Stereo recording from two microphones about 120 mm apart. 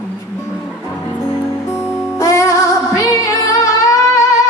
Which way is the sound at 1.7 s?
25° left (ahead or behind).